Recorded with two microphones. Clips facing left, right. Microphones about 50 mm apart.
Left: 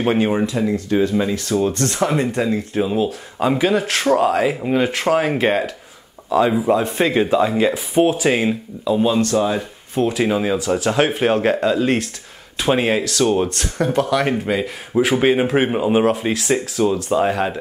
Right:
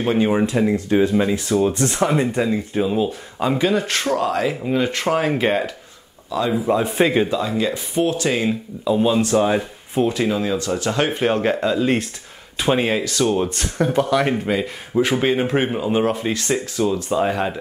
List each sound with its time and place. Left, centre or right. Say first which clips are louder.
0.0 s speech: left 1 dB; centre
0.6 s speech: right 1 dB; centre
7.2 s speech: left 5 dB; left
8.8 s speech: even; centre
9.2 s speech: right 1 dB; centre
9.9 s speech: left 1 dB; centre
10.2 s speech: left 2 dB; centre
10.8 s speech: left 3 dB; centre